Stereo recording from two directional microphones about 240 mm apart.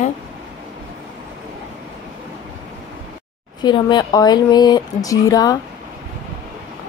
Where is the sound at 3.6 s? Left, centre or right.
Centre.